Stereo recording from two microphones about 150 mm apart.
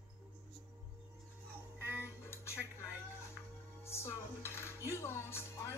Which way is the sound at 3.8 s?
15° left (ahead or behind).